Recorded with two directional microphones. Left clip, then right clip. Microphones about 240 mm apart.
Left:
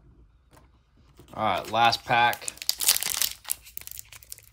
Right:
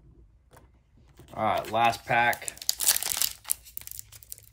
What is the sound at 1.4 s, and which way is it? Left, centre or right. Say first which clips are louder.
Speech: left 2 dB; centre.